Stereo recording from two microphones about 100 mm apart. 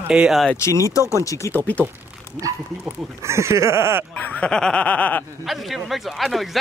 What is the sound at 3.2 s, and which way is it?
Speech, 30° right (ahead or behind).